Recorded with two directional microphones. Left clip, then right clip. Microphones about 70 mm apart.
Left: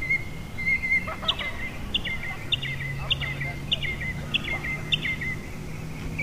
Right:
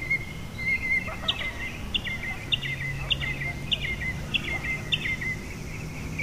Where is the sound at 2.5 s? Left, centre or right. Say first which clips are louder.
Even; centre.